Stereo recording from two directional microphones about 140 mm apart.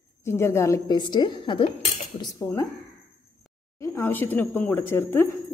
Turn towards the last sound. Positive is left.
turn(degrees=15)  # may be behind; listen again after turning